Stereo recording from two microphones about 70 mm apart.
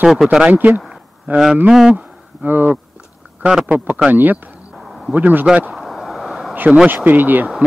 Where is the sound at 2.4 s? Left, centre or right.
Right.